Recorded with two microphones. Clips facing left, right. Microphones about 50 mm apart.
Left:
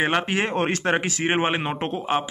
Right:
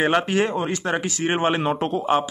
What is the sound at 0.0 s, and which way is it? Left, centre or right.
Speech, centre.